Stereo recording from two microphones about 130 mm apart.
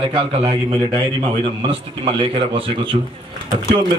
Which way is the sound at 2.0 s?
45° right (ahead or behind).